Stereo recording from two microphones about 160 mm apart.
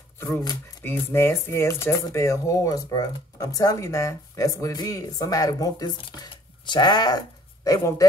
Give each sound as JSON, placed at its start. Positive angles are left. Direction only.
{"t": 0.2, "sound": "speech", "side_deg": 20}